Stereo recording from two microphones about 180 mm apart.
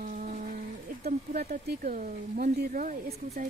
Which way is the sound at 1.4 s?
45° right (ahead or behind).